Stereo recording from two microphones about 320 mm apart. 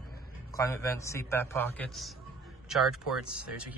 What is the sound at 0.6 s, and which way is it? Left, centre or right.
A man's voice, centre.